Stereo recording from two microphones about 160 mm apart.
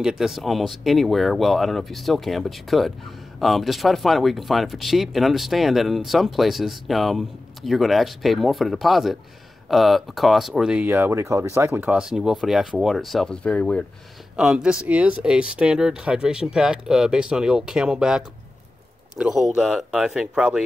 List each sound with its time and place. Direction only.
0.0 s speech: centre (ahead or behind)
14.3 s speech: 5° right (ahead or behind)